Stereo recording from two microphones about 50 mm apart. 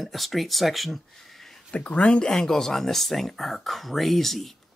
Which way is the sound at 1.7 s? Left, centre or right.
Left.